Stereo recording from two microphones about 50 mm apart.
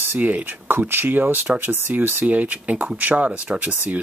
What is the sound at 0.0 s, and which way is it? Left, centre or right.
Speech, right.